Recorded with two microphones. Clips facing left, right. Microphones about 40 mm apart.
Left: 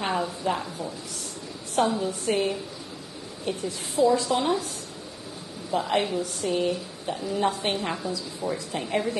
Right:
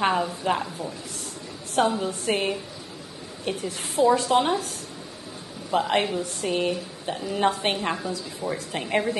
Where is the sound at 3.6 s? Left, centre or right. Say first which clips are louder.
Even; right.